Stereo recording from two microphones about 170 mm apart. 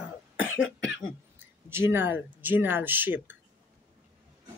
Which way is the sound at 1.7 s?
15° right (ahead or behind).